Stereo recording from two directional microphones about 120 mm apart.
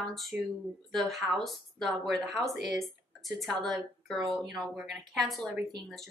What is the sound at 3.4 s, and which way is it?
A woman's voice, centre (ahead or behind).